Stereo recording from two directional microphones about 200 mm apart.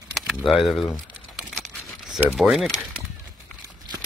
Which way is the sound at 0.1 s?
Centre (ahead or behind).